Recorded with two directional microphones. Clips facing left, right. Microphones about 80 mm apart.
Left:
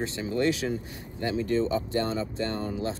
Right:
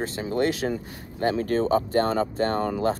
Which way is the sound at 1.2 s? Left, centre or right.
Right.